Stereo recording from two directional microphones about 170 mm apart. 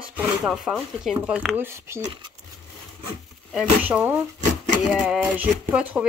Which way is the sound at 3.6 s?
10° right (ahead or behind).